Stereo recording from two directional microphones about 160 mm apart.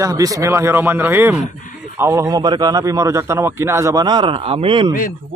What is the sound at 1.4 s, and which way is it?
Speech, 55° left (ahead or behind).